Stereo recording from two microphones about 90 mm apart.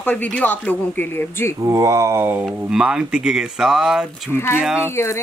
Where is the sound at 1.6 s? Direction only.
35° right (ahead or behind).